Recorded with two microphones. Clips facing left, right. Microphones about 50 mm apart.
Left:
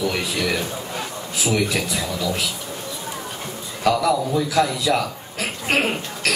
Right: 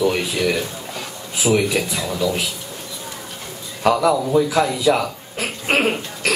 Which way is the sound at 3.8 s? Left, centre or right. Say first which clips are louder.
Right 2 dB; right.